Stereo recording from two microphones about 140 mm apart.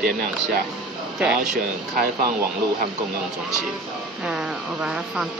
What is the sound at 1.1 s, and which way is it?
Speech, 5° right (ahead or behind).